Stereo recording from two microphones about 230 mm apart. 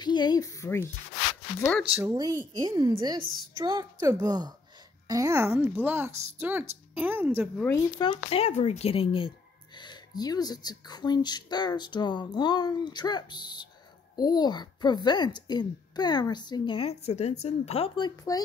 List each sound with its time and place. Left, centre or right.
0.0 s speech: centre
2.0 s a woman's voice: centre
7.5 s speech: centre
8.0 s a child's voice: left